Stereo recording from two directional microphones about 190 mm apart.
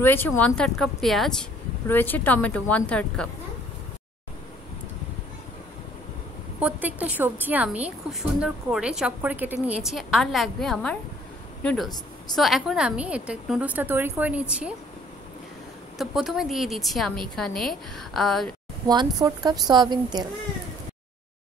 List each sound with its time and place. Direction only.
0.0 s a woman's voice: 10° left (ahead or behind)
6.6 s a woman's voice: 10° right (ahead or behind)
16.0 s a woman's voice: centre (ahead or behind)
18.9 s a woman's voice: 20° right (ahead or behind)